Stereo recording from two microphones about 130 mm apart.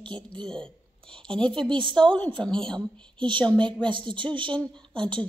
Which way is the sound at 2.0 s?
5° left (ahead or behind).